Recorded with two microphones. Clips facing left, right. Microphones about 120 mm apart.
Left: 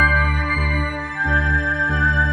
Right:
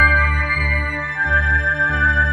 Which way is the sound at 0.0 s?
25° left (ahead or behind).